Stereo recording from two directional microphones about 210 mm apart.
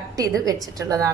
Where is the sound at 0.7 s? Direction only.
15° right (ahead or behind).